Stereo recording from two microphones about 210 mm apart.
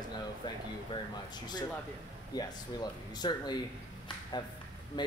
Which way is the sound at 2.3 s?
20° left (ahead or behind).